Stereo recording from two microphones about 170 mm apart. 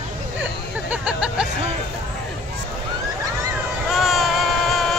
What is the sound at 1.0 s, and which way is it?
Music, 5° right (ahead or behind).